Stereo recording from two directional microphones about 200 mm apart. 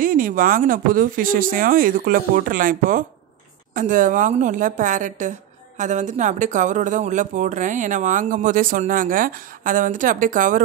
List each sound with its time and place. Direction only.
0.0 s speech: 45° right (ahead or behind)